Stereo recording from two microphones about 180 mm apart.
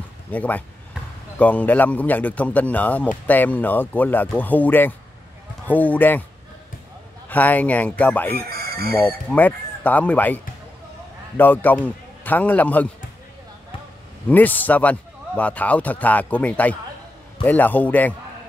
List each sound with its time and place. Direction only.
0.3 s a man's voice: 10° left (ahead or behind)
7.2 s a man's voice: 10° left (ahead or behind)
8.5 s speech: 60° right (ahead or behind)
8.9 s a man's voice: 10° left (ahead or behind)
14.3 s a man's voice: 10° left (ahead or behind)